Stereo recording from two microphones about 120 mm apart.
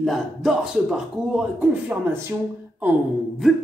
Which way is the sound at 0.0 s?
Centre (ahead or behind).